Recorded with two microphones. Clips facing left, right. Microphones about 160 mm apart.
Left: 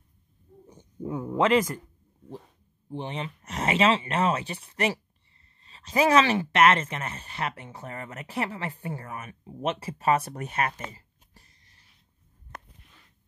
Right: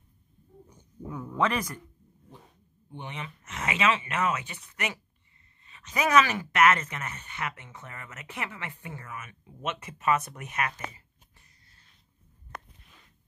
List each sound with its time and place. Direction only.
0.7 s speech: 25° left (ahead or behind)
2.9 s speech: 30° left (ahead or behind)